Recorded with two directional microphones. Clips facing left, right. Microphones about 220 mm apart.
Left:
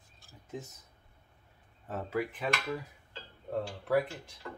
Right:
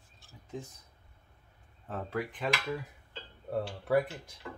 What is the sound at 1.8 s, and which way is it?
Speech, 5° left (ahead or behind).